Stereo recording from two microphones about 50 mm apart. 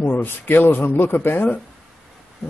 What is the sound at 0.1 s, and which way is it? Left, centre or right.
Speech, left.